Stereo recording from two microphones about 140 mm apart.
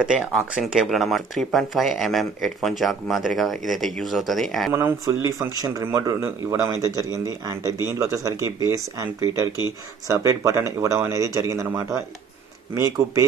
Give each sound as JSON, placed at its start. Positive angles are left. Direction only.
{"t": 0.0, "sound": "speech", "side_deg": -5}
{"t": 4.7, "sound": "speech", "side_deg": -20}